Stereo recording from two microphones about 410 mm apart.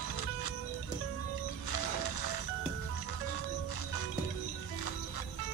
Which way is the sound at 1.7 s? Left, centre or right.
Left.